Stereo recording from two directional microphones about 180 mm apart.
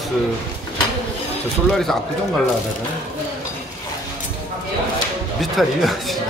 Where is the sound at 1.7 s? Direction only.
5° left (ahead or behind).